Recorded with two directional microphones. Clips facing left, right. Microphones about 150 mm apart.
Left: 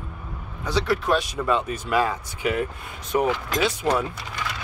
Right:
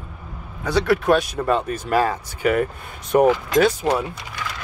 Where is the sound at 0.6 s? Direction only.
60° right (ahead or behind).